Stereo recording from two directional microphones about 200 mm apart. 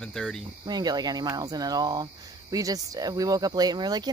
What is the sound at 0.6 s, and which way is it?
Speech, 20° right (ahead or behind).